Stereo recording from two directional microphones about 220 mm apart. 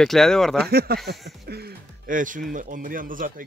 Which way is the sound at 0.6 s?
45° right (ahead or behind).